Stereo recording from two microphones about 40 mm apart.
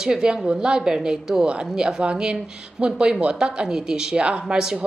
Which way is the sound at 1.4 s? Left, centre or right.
Right.